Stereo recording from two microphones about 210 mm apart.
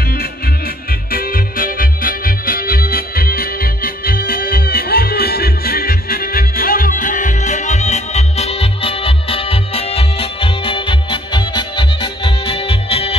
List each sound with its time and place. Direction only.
1.1 s music: 45° left (ahead or behind); by 13.1 s 25° left (ahead or behind)